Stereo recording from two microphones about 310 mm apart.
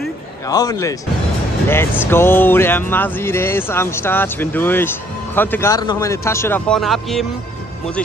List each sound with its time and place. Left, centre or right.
0.5 s speech: centre